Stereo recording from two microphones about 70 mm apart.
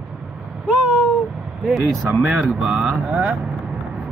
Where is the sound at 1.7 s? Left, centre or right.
Centre.